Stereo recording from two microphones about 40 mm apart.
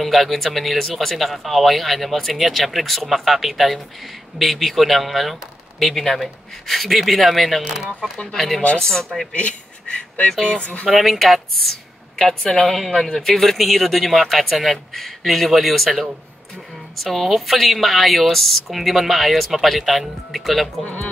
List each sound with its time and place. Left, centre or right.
0.0 s speech: centre
7.6 s speech: centre
8.3 s speech: centre
9.3 s speech: left
10.9 s speech: centre